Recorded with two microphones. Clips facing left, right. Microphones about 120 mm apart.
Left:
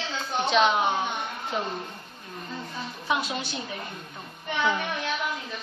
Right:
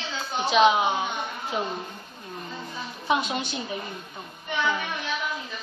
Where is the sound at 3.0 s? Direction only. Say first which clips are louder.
Right 3 dB; 20° right (ahead or behind).